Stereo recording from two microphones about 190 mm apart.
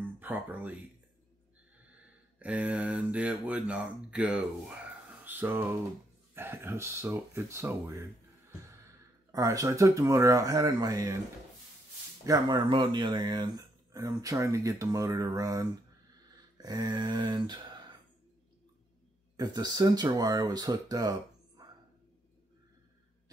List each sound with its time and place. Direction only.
0.0 s speech: 10° right (ahead or behind)
2.3 s speech: 5° right (ahead or behind)
5.2 s a sound: 10° right (ahead or behind)
6.3 s speech: 10° right (ahead or behind)
12.3 s speech: 25° right (ahead or behind)
16.5 s a sound: 20° right (ahead or behind)
19.3 s speech: 20° right (ahead or behind)